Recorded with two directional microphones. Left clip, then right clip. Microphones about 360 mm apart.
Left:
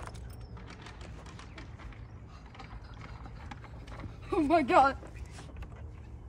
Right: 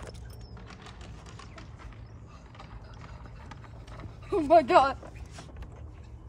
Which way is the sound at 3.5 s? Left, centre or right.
Centre.